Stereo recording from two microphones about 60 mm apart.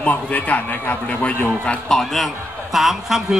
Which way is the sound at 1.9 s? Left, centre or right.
Centre.